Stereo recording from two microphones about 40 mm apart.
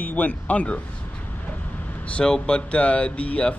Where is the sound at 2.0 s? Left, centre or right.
Left.